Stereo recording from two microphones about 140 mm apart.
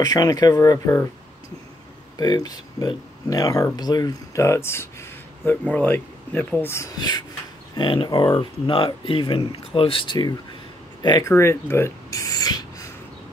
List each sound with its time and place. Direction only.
0.0 s speech: 30° left (ahead or behind)
2.1 s speech: 25° left (ahead or behind)
7.0 s speech: 30° left (ahead or behind)
11.2 s a sound: 20° left (ahead or behind)